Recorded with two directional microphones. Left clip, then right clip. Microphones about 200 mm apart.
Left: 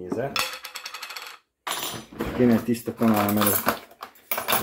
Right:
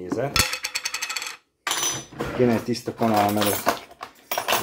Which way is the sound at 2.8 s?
20° left (ahead or behind).